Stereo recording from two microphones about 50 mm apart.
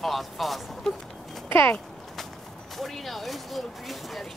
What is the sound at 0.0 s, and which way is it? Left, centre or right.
Speech, centre.